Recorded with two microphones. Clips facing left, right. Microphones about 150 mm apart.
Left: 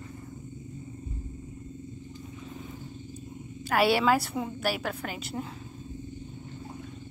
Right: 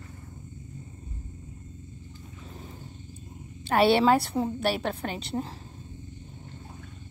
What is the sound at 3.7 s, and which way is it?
A woman's voice, 25° right (ahead or behind).